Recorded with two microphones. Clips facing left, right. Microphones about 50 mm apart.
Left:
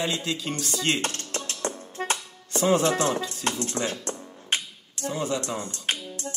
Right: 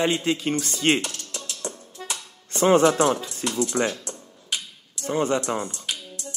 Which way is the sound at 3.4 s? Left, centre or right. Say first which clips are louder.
Right 1 dB; left.